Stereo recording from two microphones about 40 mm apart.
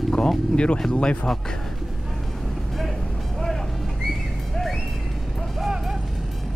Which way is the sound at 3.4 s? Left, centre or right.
Centre.